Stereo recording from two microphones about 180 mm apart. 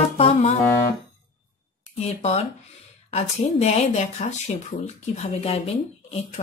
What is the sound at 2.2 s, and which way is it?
Music, 35° left (ahead or behind).